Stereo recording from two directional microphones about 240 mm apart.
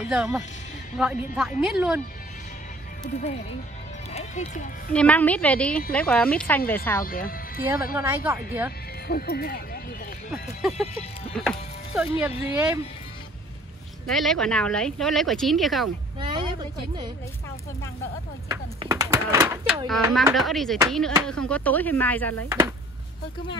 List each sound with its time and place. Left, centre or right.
0.0 s speech: centre
3.0 s speech: left
4.1 s music: left
4.9 s speech: centre
7.1 s speech: left
7.7 s speech: centre
9.0 s speech: left
11.3 s speech: centre
14.0 s speech: centre
16.2 s a sound: centre
18.5 s a sound: centre
20.3 s speech: centre